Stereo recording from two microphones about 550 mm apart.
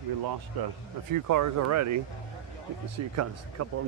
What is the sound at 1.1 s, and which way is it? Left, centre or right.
Speech, right.